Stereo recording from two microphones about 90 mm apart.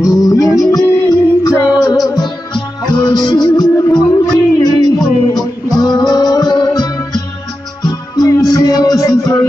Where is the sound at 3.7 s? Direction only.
35° left (ahead or behind).